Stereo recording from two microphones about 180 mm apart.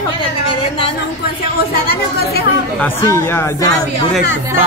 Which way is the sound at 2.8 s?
15° left (ahead or behind).